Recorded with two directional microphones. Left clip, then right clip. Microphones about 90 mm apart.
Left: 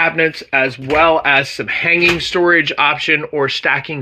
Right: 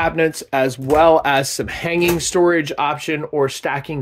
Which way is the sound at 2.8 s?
40° right (ahead or behind).